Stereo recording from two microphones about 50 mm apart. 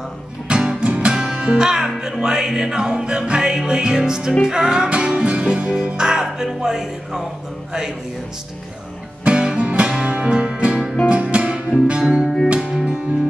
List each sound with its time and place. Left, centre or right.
0.5 s music: centre
9.2 s music: centre
12.5 s music: centre